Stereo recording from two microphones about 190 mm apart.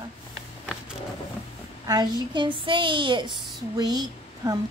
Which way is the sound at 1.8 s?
20° right (ahead or behind).